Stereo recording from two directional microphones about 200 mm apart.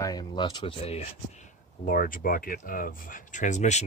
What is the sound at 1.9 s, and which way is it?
Speech, 45° left (ahead or behind).